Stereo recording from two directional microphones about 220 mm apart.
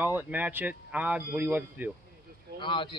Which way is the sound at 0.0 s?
10° right (ahead or behind).